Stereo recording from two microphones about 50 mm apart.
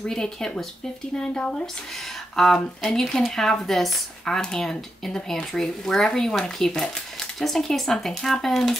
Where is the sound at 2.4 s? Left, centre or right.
Centre.